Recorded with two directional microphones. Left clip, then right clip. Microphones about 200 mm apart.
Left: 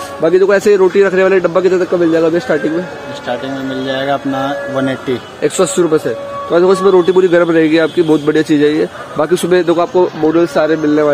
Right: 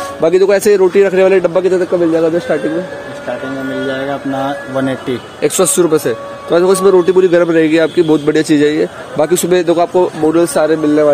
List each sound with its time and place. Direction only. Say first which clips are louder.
0.2 s a man's voice: even; 10° right (ahead or behind); by 2.6 s 10° left (ahead or behind)
4.4 s a man's voice: left 1 dB; centre (ahead or behind); by 6.8 s 15° right (ahead or behind)
6.8 s a man's voice: even; 5° right (ahead or behind)